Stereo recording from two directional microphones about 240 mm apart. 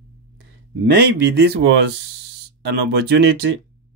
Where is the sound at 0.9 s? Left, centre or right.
Right.